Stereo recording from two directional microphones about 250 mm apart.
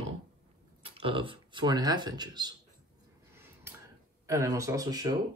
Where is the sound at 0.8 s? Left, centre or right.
Right.